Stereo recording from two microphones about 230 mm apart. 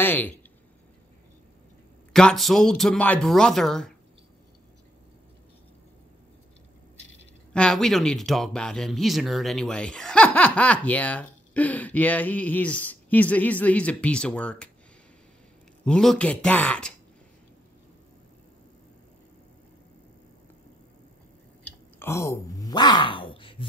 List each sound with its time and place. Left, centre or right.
0.0 s speech: centre
2.1 s speech: centre
7.5 s speech: centre
15.8 s speech: centre
22.0 s speech: centre